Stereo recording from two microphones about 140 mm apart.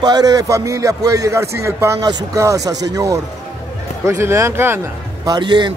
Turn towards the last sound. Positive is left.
turn(degrees=-35)  # may be behind; listen again after turning